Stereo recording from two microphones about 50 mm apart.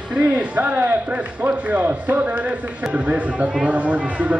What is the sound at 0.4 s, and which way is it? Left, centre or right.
A man's voice, right.